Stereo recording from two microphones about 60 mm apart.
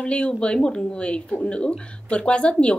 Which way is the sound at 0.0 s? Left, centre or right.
Centre.